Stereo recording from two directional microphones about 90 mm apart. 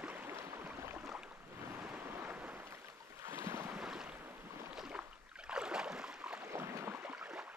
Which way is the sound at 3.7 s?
5° right (ahead or behind).